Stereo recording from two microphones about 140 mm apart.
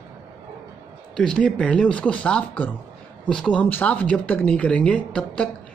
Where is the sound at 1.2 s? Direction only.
5° left (ahead or behind).